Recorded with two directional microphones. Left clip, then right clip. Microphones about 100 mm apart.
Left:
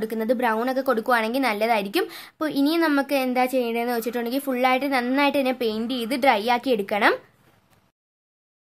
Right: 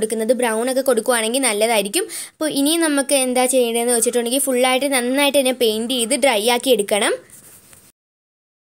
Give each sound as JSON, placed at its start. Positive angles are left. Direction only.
{"t": 0.0, "sound": "a woman's voice", "side_deg": -20}